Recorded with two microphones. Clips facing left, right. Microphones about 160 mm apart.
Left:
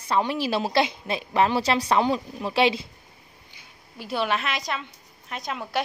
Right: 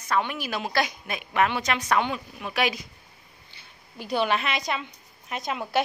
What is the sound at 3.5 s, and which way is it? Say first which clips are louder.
A woman's voice: right 1 dB; centre (ahead or behind).